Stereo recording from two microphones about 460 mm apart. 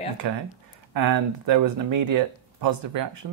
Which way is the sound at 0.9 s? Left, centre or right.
Right.